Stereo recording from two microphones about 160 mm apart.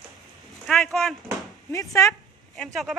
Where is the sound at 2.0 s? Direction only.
20° left (ahead or behind).